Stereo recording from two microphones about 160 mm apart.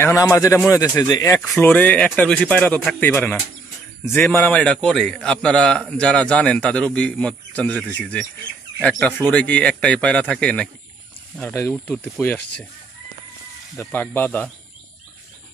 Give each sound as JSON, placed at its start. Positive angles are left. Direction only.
{"t": 0.0, "sound": "a man's voice", "side_deg": 15}
{"t": 1.4, "sound": "a man's voice", "side_deg": 5}
{"t": 9.3, "sound": "a man's voice", "side_deg": 10}
{"t": 13.8, "sound": "a man's voice", "side_deg": 15}